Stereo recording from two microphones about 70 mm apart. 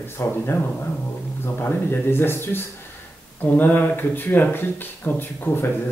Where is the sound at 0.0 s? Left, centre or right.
Left.